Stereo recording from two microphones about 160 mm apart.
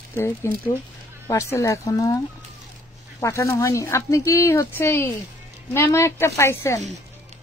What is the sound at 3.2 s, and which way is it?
Speech, 20° left (ahead or behind).